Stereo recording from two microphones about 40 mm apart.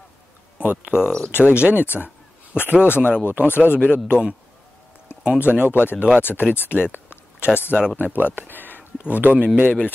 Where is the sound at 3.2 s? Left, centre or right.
Right.